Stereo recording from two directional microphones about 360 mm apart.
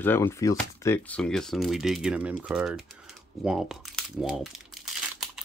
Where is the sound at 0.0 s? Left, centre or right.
Centre.